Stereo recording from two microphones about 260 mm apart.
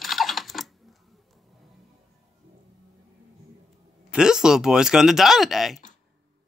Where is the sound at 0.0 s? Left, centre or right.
Centre.